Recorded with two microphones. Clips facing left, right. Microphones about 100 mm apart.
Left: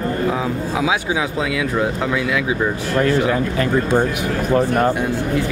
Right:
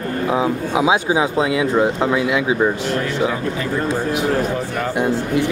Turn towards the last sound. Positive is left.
turn(degrees=-20)  # may be behind; listen again after turning